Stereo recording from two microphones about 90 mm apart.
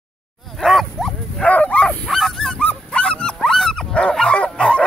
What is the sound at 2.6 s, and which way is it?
Dog, 15° left (ahead or behind).